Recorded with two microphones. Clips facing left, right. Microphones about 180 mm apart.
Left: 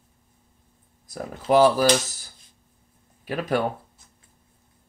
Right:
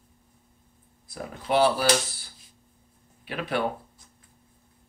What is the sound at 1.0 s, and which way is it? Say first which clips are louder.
Speech: left 6 dB; 40° left (ahead or behind).